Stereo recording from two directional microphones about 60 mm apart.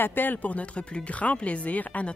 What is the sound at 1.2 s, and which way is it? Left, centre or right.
Speech, left.